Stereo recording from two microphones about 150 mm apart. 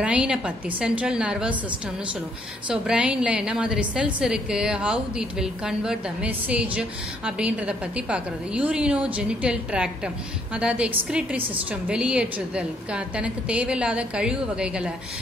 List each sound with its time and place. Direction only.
0.0 s a woman's voice: 5° right (ahead or behind)
2.7 s a woman's voice: 5° right (ahead or behind)